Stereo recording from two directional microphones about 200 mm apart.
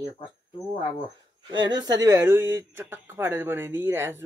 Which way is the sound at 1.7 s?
20° right (ahead or behind).